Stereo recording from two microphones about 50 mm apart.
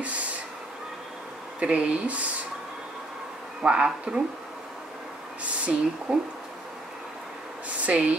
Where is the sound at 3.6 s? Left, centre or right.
Centre.